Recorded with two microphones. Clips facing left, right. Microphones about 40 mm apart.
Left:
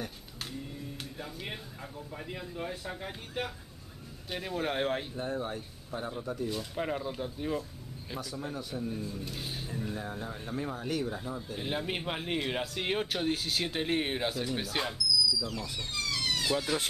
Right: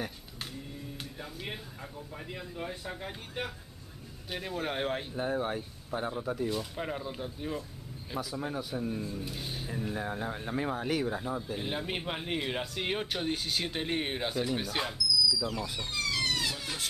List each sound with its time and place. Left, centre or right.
0.5 s speech: centre
5.1 s speech: centre
6.5 s speech: centre
8.4 s speech: centre
9.9 s speech: right
10.9 s speech: centre
11.5 s speech: centre
15.4 s a sound: centre